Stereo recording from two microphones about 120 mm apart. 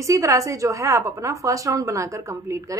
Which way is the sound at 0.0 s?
25° right (ahead or behind).